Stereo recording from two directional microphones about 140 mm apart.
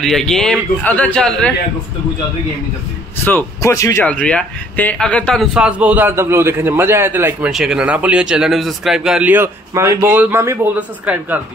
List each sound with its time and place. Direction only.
0.0 s a man's voice: 5° left (ahead or behind)
3.3 s a man's voice: 20° left (ahead or behind)
4.0 s speech: 10° left (ahead or behind); by 7.5 s 15° right (ahead or behind)
7.5 s speech: 5° right (ahead or behind)